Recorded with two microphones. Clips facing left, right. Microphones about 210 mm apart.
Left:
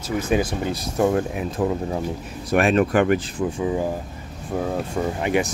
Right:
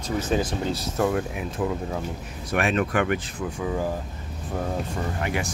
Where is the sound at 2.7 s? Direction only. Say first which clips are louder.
Left 5 dB; 35° left (ahead or behind).